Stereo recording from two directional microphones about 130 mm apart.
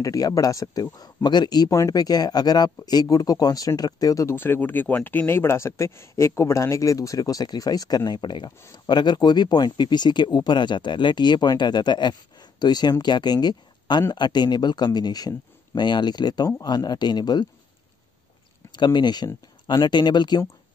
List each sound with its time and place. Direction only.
0.0 s speech: 25° left (ahead or behind)
18.7 s speech: 35° left (ahead or behind)